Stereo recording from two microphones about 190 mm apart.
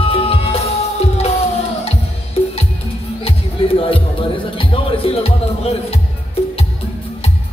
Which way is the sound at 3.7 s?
30° left (ahead or behind).